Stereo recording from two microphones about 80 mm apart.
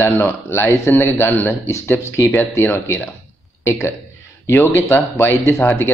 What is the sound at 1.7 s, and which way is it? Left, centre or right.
A man's voice, left.